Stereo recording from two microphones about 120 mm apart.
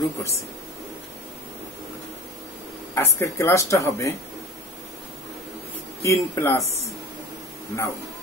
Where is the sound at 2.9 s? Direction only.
20° left (ahead or behind).